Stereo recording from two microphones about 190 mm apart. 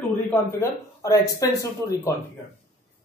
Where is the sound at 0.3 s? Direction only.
15° left (ahead or behind).